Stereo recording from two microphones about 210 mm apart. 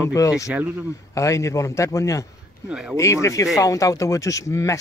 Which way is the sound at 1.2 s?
15° left (ahead or behind).